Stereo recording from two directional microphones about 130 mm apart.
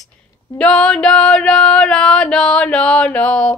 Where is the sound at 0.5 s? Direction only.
5° left (ahead or behind).